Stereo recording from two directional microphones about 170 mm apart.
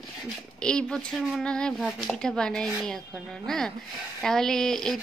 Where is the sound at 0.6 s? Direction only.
5° left (ahead or behind).